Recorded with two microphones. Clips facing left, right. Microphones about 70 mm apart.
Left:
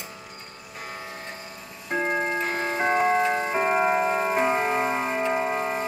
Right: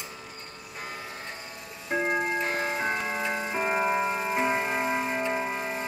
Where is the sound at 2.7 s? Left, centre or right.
Left.